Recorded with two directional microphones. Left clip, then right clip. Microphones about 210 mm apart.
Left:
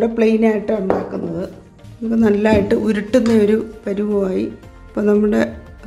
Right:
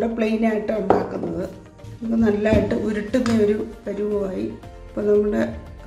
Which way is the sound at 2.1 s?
50° left (ahead or behind).